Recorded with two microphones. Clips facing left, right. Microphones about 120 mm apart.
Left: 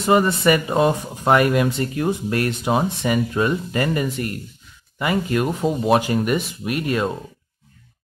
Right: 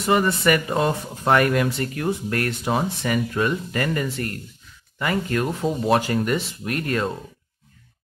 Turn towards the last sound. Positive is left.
turn(degrees=15)  # may be behind; listen again after turning